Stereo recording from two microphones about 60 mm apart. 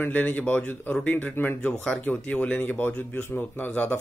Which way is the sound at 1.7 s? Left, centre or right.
Centre.